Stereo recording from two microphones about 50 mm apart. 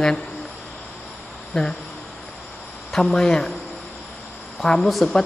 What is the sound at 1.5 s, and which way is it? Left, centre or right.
Speech, centre.